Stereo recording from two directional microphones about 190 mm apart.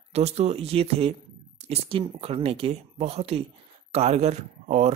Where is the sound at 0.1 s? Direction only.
35° right (ahead or behind).